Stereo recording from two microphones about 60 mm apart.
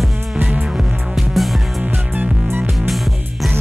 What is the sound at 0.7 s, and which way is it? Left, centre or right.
Music, centre.